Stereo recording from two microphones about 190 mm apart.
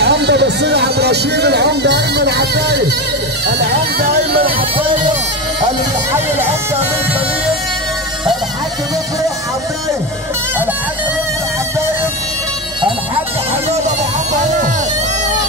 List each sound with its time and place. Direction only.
0.0 s speech: 65° right (ahead or behind)